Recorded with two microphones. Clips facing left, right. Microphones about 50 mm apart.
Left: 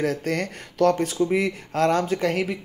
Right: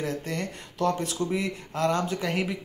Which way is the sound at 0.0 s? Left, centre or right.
Left.